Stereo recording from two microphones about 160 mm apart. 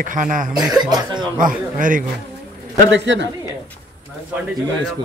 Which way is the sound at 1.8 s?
55° right (ahead or behind).